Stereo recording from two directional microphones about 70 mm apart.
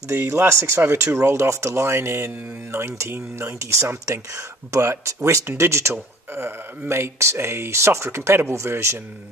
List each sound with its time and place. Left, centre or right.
0.1 s speech: right